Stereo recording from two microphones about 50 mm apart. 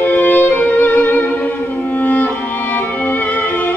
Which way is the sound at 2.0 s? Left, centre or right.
Left.